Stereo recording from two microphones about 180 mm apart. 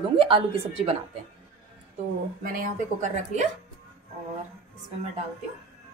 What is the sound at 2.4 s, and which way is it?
A woman's voice, 45° right (ahead or behind).